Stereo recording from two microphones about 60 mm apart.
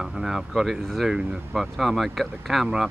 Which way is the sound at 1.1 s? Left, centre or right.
Centre.